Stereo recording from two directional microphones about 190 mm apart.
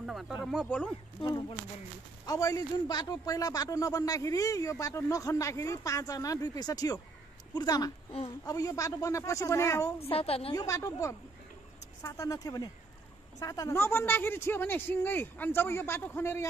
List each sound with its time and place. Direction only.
0.0 s speech: centre (ahead or behind)
1.2 s a man's voice: 25° left (ahead or behind)
9.9 s a woman's voice: 30° left (ahead or behind)
10.5 s a man's voice: 20° left (ahead or behind)